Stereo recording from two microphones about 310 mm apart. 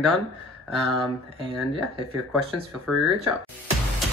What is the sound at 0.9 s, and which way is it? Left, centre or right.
Speech, centre.